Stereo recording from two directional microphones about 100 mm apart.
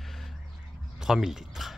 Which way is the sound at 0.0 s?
Centre (ahead or behind).